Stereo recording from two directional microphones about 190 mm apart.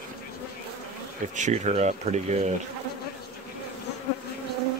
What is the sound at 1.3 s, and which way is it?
Speech, 40° right (ahead or behind).